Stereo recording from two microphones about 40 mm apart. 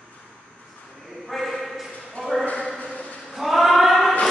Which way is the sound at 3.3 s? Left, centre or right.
Centre.